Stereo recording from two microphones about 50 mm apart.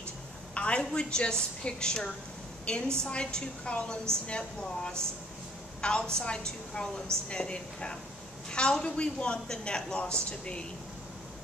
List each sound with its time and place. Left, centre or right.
0.6 s a woman's voice: left